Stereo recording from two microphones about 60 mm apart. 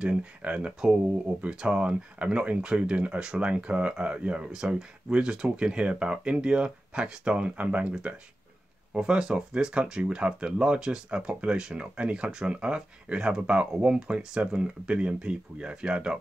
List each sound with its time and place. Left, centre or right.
0.0 s speech: centre
8.9 s speech: centre